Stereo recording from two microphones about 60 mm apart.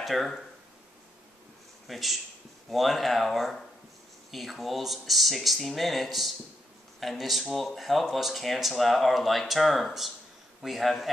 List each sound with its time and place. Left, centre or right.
0.0 s speech: centre
1.9 s speech: centre